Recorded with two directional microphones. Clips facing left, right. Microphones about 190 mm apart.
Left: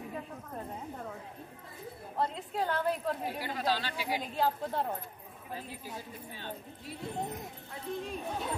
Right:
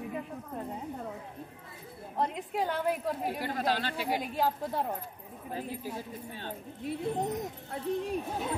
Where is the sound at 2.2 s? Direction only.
15° right (ahead or behind).